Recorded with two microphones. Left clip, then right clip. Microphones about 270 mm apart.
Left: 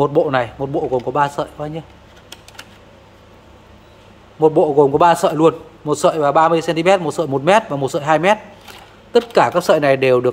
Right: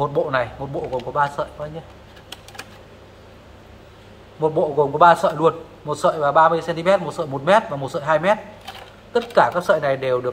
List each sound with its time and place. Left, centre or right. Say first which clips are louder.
0.0 s a man's voice: left 5 dB; left
4.4 s a man's voice: left 6 dB; left